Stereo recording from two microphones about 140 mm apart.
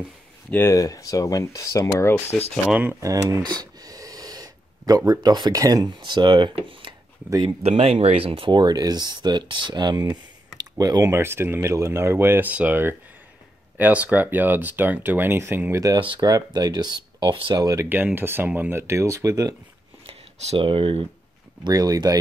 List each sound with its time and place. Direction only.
0.5 s speech: 20° left (ahead or behind)
2.7 s speech: 15° right (ahead or behind); by 17.6 s 35° right (ahead or behind)
17.6 s speech: 15° right (ahead or behind)
20.1 s a sound: 40° right (ahead or behind)
21.6 s speech: 25° right (ahead or behind)